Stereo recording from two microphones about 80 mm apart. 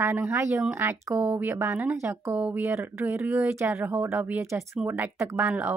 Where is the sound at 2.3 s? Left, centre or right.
Right.